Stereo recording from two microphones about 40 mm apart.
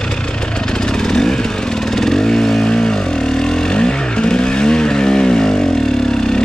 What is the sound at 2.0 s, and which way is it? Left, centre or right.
Vehicle, centre.